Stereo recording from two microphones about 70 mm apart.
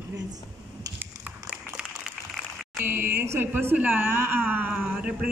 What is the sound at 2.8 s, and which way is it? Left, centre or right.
Speech, right.